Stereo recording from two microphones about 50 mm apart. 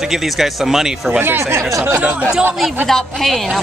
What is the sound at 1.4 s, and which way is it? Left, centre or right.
Speech, right.